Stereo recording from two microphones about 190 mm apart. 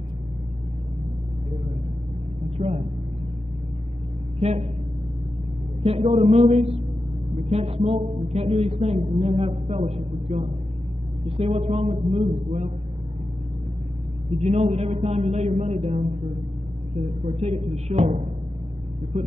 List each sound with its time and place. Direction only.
2.5 s speech: 35° right (ahead or behind)
4.4 s a woman's voice: 35° right (ahead or behind)
5.9 s speech: 35° right (ahead or behind)
14.4 s speech: 35° right (ahead or behind)
17.2 s speech: 35° right (ahead or behind)